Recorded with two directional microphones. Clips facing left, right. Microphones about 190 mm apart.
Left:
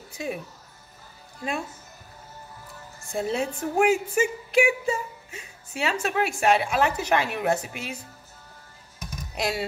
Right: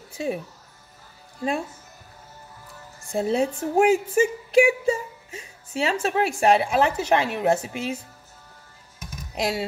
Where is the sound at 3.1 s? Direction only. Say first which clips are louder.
Right 4 dB; 30° right (ahead or behind).